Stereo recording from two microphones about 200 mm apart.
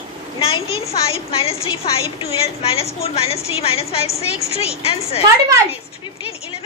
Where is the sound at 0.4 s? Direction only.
30° left (ahead or behind).